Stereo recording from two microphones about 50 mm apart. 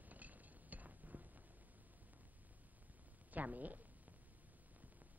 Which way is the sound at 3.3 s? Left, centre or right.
Right.